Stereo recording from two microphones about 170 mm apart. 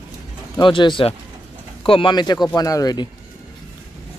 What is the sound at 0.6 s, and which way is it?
Speech, 30° left (ahead or behind).